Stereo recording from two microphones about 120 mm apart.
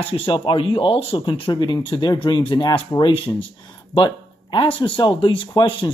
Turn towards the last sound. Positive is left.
turn(degrees=40)  # may be behind; listen again after turning